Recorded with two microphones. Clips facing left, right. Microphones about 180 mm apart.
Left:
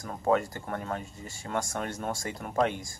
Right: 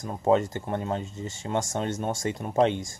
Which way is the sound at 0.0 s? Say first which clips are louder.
Right 4 dB; 20° right (ahead or behind).